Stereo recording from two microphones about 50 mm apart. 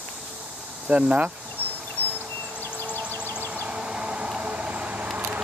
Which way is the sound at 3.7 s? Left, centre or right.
Centre.